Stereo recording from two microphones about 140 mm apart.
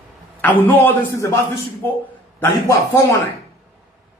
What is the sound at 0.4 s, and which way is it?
A man's voice, 10° left (ahead or behind).